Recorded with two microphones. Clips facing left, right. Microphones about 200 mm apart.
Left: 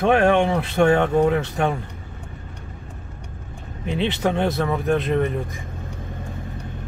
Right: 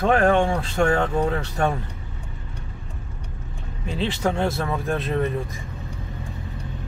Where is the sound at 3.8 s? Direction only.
20° left (ahead or behind).